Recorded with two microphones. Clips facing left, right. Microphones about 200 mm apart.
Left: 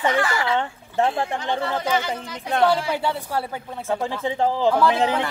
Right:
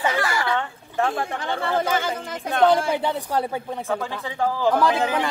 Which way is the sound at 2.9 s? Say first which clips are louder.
Right 1 dB; 20° right (ahead or behind).